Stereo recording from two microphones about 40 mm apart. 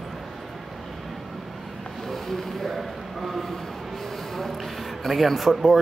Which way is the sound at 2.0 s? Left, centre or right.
Centre.